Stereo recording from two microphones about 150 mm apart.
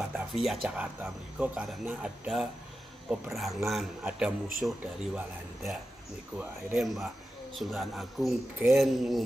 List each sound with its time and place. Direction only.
0.1 s music: centre (ahead or behind)
0.6 s a man's voice: 10° right (ahead or behind)